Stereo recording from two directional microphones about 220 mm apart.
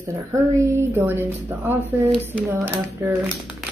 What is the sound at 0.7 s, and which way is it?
Speech, 10° right (ahead or behind).